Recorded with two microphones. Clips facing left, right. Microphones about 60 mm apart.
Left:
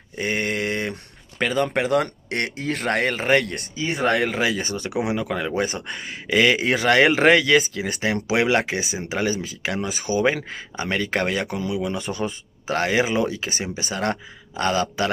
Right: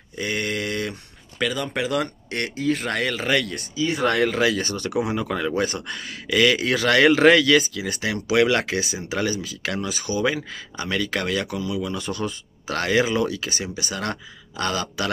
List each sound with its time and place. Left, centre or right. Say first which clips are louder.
0.2 s a sound: left 2 dB; left
1.4 s speech: left 3 dB; left
3.2 s speech: left 3 dB; left
4.1 s speech: even; centre
5.1 s speech: even; centre
5.8 s speech: left 1 dB; left
8.0 s speech: right 2 dB; left